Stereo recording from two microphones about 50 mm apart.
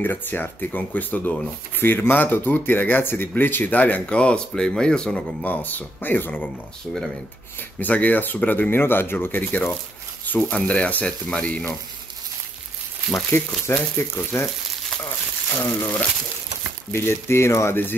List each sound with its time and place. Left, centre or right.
0.0 s speech: left
1.8 s speech: left
4.0 s speech: left
5.4 s speech: left
7.8 s speech: left
13.3 s speech: left
15.6 s speech: left
16.9 s speech: left